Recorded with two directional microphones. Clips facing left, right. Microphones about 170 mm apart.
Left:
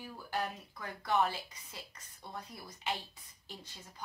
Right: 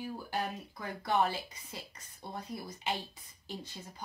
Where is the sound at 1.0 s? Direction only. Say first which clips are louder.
Right 1 dB; 30° right (ahead or behind).